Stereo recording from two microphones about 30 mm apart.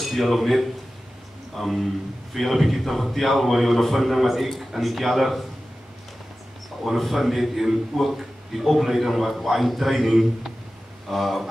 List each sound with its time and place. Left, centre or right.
0.0 s speech: centre
7.0 s speech: centre